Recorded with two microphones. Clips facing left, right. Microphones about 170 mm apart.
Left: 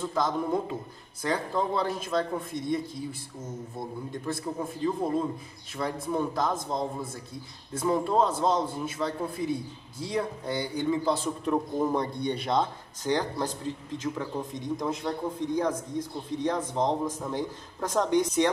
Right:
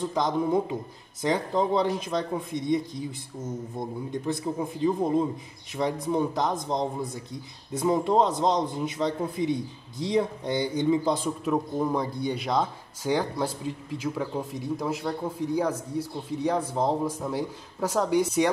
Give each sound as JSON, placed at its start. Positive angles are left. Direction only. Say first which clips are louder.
{"t": 0.0, "sound": "a man's voice", "louder": "right 2 dB", "side_deg": -15}
{"t": 4.3, "sound": "a man's voice", "louder": "right 3 dB", "side_deg": -15}
{"t": 11.4, "sound": "a man's voice", "louder": "even", "side_deg": 0}